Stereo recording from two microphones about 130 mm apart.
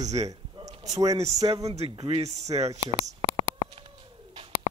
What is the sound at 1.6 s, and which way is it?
Speech, 55° right (ahead or behind).